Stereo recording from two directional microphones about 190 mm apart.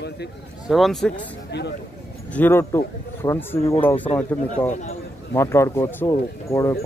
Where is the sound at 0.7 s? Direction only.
Centre (ahead or behind).